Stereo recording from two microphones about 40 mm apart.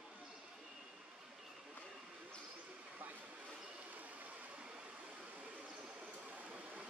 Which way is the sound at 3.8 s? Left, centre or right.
Right.